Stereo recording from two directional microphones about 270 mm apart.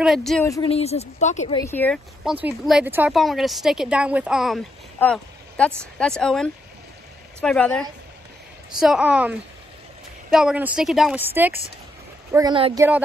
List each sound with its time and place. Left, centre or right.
0.0 s a woman's voice: centre
0.5 s a woman's voice: centre
1.6 s a woman's voice: centre